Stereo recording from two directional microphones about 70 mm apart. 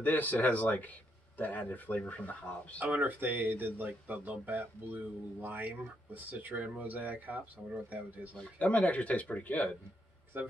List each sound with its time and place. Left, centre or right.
0.0 s speech: left
2.8 s speech: right
8.4 s speech: centre
10.3 s speech: right